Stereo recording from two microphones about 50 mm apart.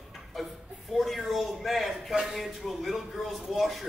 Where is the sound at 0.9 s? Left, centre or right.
Centre.